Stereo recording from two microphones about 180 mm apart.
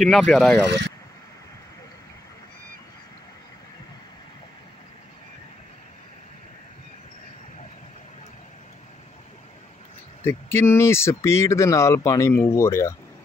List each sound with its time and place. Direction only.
0.0 s speech: centre (ahead or behind)
10.2 s speech: 15° left (ahead or behind)